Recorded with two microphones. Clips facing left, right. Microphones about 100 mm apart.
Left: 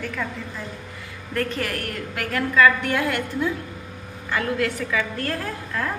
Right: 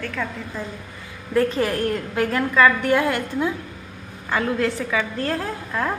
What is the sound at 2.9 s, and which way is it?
Speech, 45° right (ahead or behind).